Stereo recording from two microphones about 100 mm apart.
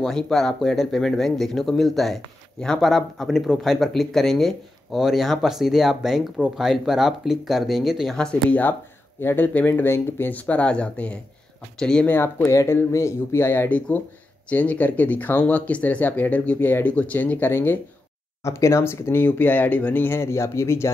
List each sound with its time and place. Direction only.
0.0 s speech: 5° left (ahead or behind)
12.1 s speech: 25° left (ahead or behind)